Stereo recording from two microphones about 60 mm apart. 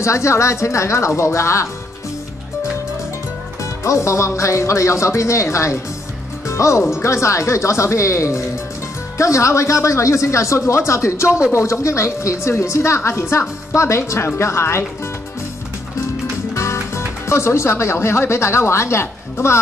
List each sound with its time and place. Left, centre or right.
0.0 s a woman's voice: left
3.8 s speech: left
6.4 s music: left
7.0 s a woman's voice: left
16.5 s speech: left